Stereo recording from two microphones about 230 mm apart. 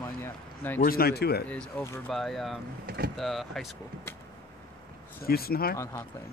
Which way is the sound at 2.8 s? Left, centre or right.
Right.